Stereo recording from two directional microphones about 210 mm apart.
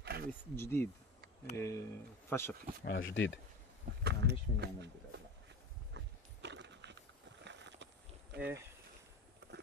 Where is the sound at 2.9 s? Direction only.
60° left (ahead or behind).